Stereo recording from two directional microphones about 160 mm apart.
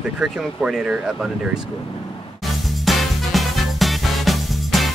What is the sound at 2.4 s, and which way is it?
Music, centre (ahead or behind).